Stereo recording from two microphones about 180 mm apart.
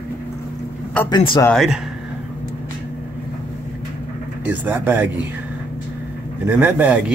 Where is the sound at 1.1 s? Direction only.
30° left (ahead or behind).